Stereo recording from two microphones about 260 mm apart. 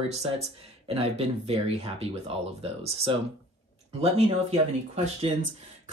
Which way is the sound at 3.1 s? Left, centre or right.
Centre.